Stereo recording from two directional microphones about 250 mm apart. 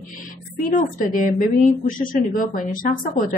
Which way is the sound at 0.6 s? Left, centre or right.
Left.